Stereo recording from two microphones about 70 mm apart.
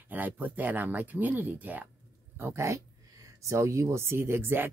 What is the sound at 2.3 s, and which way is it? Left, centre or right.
Speech, right.